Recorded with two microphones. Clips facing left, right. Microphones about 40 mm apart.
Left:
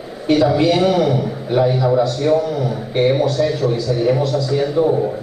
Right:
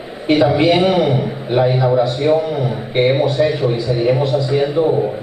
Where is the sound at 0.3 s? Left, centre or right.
Right.